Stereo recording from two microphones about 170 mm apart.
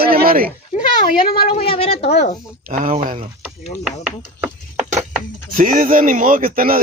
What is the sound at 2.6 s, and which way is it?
Speech, 50° right (ahead or behind).